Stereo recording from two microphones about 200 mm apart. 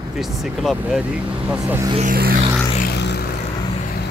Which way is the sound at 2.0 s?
45° right (ahead or behind).